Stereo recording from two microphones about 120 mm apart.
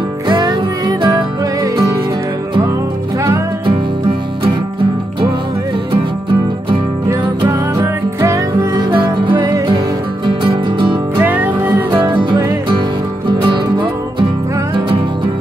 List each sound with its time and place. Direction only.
0.4 s music: 35° right (ahead or behind)
7.1 s music: 25° right (ahead or behind)
8.9 s music: 40° right (ahead or behind)
11.1 s music: 15° right (ahead or behind)
11.9 s music: 45° right (ahead or behind)